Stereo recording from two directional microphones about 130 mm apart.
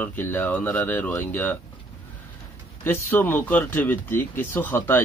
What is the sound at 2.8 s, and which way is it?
Speech, 15° left (ahead or behind).